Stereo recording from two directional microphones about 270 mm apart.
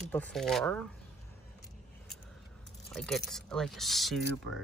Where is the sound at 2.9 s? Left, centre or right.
Centre.